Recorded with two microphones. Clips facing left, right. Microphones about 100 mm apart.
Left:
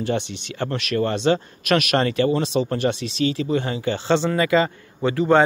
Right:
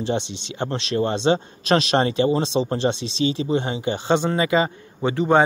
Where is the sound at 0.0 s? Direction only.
20° right (ahead or behind).